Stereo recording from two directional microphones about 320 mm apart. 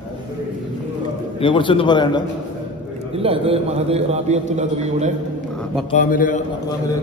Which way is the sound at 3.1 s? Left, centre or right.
Centre.